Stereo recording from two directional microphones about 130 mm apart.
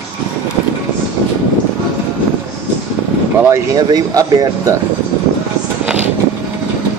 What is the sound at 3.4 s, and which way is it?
Speech, 25° right (ahead or behind).